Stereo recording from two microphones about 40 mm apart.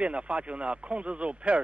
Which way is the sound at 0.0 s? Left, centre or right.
Right.